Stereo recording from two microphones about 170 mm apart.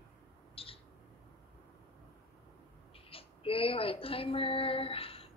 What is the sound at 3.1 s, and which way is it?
A woman's voice, 35° left (ahead or behind).